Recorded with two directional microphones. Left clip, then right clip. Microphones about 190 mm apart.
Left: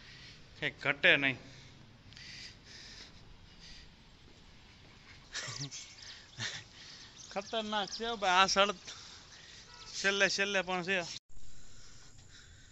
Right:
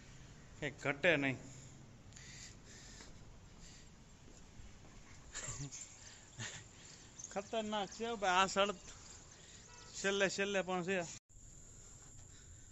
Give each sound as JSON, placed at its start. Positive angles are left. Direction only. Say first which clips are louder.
{"t": 0.6, "sound": "speech", "louder": "left 6 dB", "side_deg": 0}
{"t": 2.1, "sound": "crow", "louder": "left 7 dB", "side_deg": -15}
{"t": 5.3, "sound": "dog", "louder": "left 7 dB", "side_deg": 20}
{"t": 7.2, "sound": "speech", "louder": "left 4 dB", "side_deg": 20}
{"t": 10.0, "sound": "speech", "louder": "left 6 dB", "side_deg": -5}